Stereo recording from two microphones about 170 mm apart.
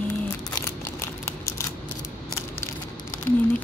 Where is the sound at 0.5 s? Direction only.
15° left (ahead or behind).